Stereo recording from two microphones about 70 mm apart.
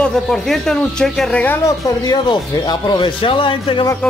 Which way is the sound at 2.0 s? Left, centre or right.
Left.